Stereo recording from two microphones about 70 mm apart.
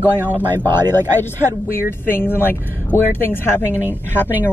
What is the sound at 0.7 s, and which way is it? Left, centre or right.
Speech, right.